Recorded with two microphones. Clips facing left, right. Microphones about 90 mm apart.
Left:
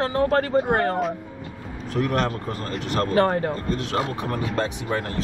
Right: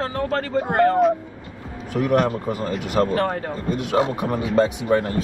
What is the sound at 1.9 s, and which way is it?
Speech, 10° right (ahead or behind).